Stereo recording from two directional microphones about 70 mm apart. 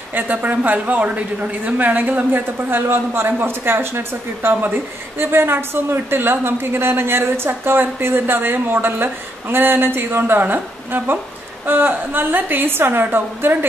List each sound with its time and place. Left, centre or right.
0.1 s a woman's voice: right